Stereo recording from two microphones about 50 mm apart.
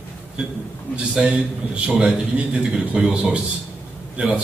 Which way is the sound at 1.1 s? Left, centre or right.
Centre.